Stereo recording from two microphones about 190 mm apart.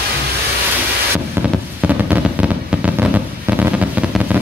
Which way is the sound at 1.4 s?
10° right (ahead or behind).